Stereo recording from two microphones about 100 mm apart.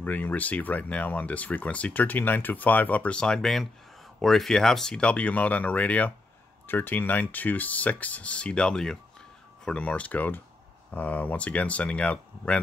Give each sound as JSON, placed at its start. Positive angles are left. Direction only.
{"t": 0.0, "sound": "speech", "side_deg": 15}